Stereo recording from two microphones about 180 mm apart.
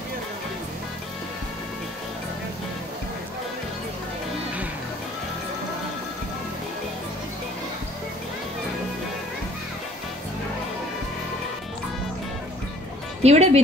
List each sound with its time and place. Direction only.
13.2 s speech: 35° right (ahead or behind)